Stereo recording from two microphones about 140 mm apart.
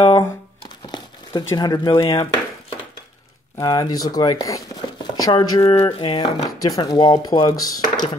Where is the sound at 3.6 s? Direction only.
25° left (ahead or behind).